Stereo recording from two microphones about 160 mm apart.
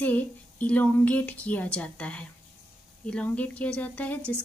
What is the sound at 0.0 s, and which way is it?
A woman's voice, 10° left (ahead or behind).